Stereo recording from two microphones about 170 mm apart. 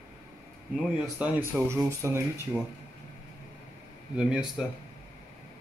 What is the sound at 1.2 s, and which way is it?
Speech, 10° right (ahead or behind).